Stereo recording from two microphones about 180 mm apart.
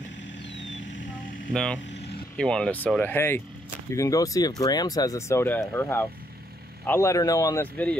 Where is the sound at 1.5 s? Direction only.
5° left (ahead or behind).